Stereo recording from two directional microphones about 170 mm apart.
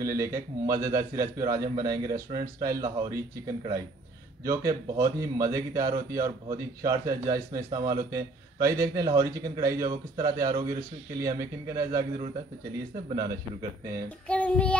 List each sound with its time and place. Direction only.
0.0 s a man's voice: 20° right (ahead or behind)
4.5 s a man's voice: 20° right (ahead or behind)
14.0 s child singing: 10° left (ahead or behind)